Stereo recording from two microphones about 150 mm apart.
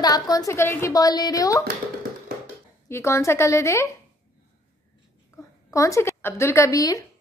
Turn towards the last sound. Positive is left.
turn(degrees=25)  # may be behind; listen again after turning